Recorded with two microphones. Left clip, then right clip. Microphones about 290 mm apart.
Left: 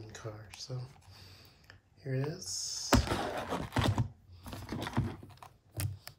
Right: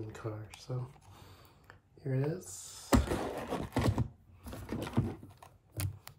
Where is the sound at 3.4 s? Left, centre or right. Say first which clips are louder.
Left 1 dB; centre.